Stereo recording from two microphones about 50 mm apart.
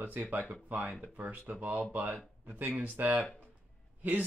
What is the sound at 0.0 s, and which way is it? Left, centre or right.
Speech, right.